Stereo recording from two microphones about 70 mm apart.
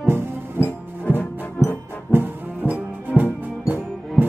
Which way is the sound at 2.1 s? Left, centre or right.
Right.